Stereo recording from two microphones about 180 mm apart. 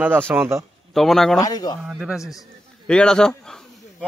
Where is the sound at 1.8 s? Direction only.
5° right (ahead or behind).